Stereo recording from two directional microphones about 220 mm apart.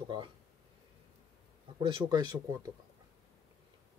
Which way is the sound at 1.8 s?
20° right (ahead or behind).